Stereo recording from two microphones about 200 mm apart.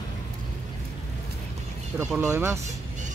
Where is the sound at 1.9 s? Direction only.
10° right (ahead or behind).